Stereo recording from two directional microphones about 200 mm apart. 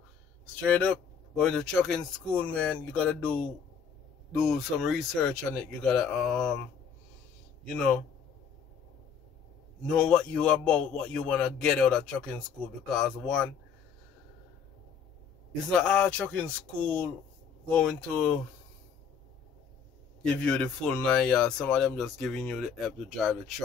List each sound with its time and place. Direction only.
0.6 s a man's voice: 5° left (ahead or behind)
7.6 s a man's voice: 5° left (ahead or behind)
9.8 s a man's voice: 5° left (ahead or behind)
15.7 s a man's voice: 5° left (ahead or behind)
20.3 s a man's voice: 5° left (ahead or behind)